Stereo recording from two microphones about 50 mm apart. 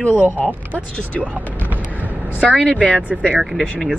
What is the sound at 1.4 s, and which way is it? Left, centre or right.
Basketball bounce, right.